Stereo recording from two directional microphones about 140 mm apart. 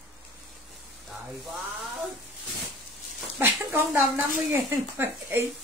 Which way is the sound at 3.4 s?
20° right (ahead or behind).